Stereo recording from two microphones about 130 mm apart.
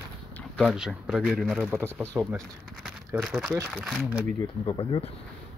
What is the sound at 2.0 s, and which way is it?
Speech, 15° right (ahead or behind).